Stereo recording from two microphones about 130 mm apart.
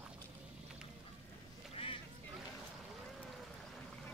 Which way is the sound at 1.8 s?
45° left (ahead or behind).